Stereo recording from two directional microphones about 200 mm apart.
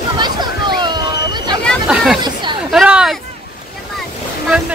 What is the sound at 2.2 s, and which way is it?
Chatter, 20° right (ahead or behind).